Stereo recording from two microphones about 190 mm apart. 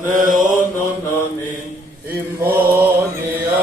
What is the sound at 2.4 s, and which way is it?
Mantra, 10° right (ahead or behind).